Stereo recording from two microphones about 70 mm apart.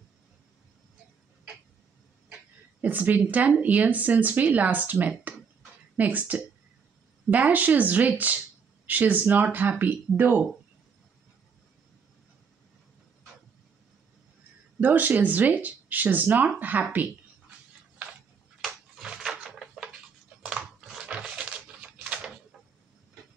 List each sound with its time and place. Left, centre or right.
2.8 s speech: right
14.8 s speech: right
18.6 s a sound: centre